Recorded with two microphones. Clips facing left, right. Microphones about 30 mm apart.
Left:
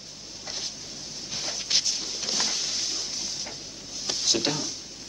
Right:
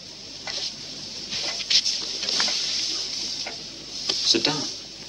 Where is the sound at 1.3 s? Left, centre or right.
Right.